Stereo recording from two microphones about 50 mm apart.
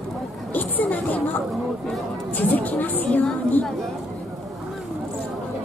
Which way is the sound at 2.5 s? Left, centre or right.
Left.